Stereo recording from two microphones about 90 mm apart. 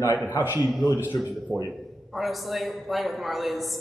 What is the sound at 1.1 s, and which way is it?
Speech, 45° left (ahead or behind).